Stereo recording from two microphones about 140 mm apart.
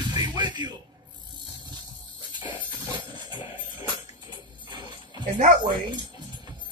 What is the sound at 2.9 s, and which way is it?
Music, 35° right (ahead or behind).